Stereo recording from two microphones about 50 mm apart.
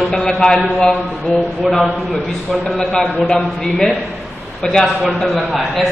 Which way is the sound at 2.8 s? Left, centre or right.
Centre.